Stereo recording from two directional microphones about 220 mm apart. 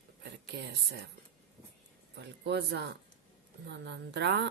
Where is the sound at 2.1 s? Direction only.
50° right (ahead or behind).